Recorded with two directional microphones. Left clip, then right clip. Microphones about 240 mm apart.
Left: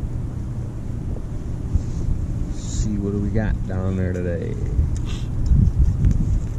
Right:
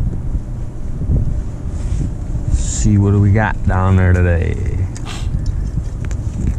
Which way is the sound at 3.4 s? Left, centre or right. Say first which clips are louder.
Right 11 dB; centre.